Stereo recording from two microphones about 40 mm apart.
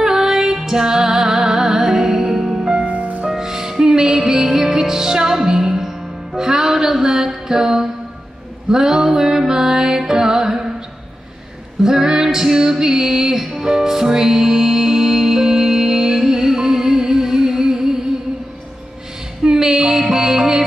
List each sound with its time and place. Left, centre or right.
0.0 s music: centre
2.6 s music: right
3.3 s music: centre
11.8 s music: centre
19.4 s music: centre